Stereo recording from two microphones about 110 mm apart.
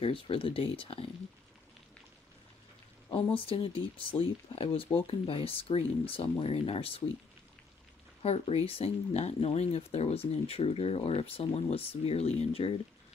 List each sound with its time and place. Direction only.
0.0 s speech: 55° left (ahead or behind)
3.3 s speech: 55° left (ahead or behind)
8.2 s speech: 70° left (ahead or behind)